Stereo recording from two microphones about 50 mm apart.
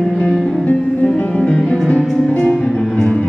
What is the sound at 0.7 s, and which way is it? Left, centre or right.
Music, centre.